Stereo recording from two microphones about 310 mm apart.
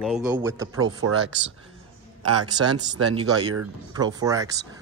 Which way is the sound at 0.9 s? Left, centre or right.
Right.